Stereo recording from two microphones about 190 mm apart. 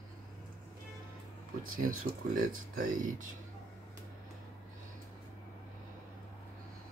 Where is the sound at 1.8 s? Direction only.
45° right (ahead or behind).